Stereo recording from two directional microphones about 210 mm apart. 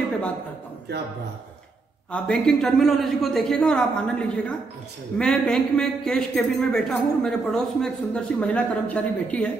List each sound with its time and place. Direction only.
0.9 s a man's voice: 50° right (ahead or behind)
2.0 s a man's voice: 5° left (ahead or behind)